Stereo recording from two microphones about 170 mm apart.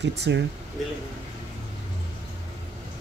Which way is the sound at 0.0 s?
85° right.